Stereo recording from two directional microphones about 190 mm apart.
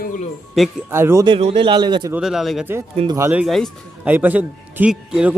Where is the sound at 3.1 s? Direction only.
10° right (ahead or behind).